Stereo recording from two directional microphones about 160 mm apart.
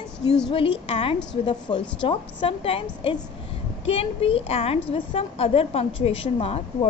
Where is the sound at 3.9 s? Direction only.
35° left (ahead or behind).